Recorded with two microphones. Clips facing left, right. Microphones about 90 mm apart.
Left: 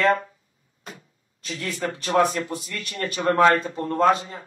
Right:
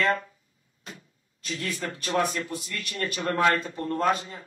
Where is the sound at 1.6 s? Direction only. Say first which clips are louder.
Left 5 dB; 35° left (ahead or behind).